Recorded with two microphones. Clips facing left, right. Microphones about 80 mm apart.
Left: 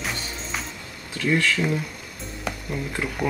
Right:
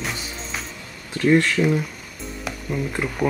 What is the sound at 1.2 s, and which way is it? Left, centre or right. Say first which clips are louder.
Speech: right 5 dB; right.